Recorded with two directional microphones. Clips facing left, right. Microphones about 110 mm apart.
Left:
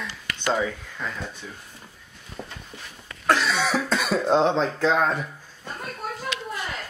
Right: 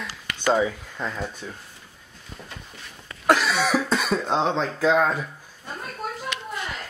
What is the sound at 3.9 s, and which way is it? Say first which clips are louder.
Speech: left 3 dB; centre (ahead or behind).